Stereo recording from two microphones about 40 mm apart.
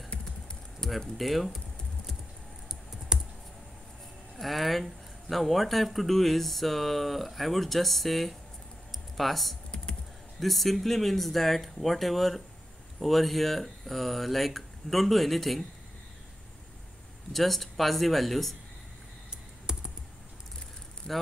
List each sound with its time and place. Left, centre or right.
0.7 s speech: centre
3.1 s computer keyboard: centre
4.4 s speech: centre
17.3 s speech: centre
19.3 s computer keyboard: centre